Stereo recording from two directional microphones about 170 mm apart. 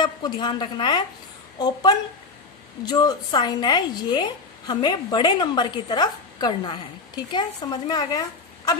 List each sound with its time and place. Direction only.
0.0 s a woman's voice: 25° left (ahead or behind)